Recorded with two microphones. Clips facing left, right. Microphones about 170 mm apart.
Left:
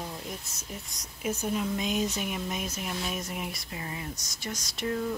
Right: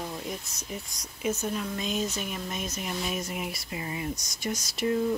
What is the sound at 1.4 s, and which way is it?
Speech, 15° left (ahead or behind).